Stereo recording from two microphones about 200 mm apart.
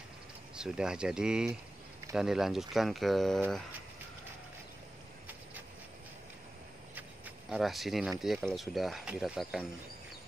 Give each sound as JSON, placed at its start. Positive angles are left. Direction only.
{"t": 0.6, "sound": "speech", "side_deg": -5}
{"t": 7.0, "sound": "a sound", "side_deg": 0}
{"t": 8.2, "sound": "speech", "side_deg": 0}